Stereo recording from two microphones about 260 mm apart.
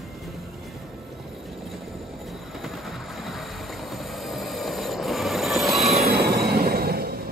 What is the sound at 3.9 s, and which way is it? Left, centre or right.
Train, centre.